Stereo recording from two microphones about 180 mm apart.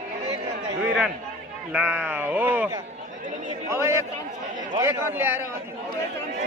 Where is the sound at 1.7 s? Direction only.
10° right (ahead or behind).